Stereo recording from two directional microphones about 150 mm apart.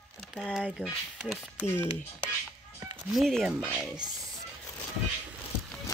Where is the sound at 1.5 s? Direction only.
15° left (ahead or behind).